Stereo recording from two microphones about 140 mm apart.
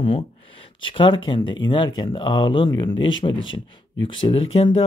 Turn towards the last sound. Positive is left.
turn(degrees=40)  # may be behind; listen again after turning